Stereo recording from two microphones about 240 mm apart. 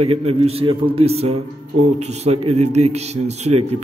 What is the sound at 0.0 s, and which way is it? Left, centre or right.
A man's voice, right.